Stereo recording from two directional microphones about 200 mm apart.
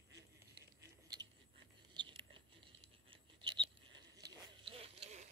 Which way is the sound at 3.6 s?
65° right (ahead or behind).